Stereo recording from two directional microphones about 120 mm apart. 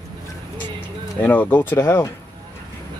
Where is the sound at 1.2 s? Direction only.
15° left (ahead or behind).